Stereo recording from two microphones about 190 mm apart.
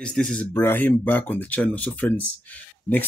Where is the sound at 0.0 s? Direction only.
5° left (ahead or behind).